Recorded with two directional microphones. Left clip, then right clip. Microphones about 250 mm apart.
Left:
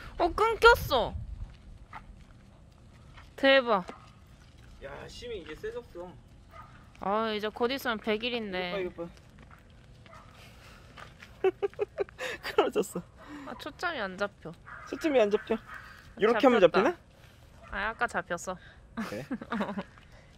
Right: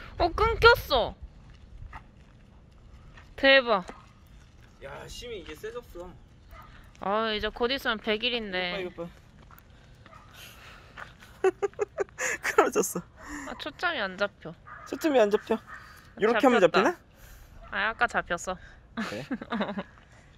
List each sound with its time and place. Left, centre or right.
0.0 s speech: centre
3.3 s speech: centre
4.8 s speech: right
7.0 s speech: centre
8.7 s speech: right
11.0 s a sound: right
11.8 s speech: right
12.9 s a sound: right
13.5 s speech: centre
14.9 s speech: right
17.6 s speech: centre